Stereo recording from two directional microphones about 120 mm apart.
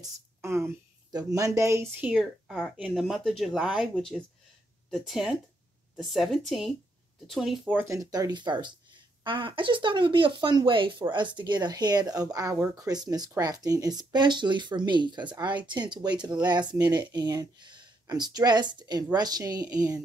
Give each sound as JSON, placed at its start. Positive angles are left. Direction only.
{"t": 0.4, "sound": "a woman's voice", "side_deg": -20}
{"t": 2.0, "sound": "speech", "side_deg": 0}
{"t": 7.7, "sound": "speech", "side_deg": -25}